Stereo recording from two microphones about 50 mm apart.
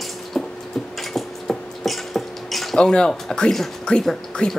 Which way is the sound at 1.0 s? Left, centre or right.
Centre.